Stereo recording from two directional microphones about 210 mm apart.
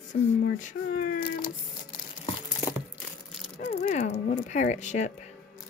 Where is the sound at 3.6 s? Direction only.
35° left (ahead or behind).